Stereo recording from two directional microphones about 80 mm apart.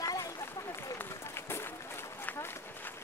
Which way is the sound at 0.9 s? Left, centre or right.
Left.